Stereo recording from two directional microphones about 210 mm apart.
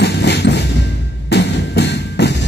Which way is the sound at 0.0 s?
55° left (ahead or behind).